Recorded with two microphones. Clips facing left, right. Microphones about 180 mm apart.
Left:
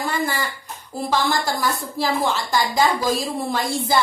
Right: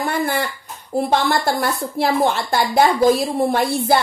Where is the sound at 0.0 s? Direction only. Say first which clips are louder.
Right 3 dB; 60° right (ahead or behind).